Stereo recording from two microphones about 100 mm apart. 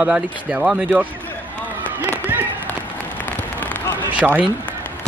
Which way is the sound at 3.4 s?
20° left (ahead or behind).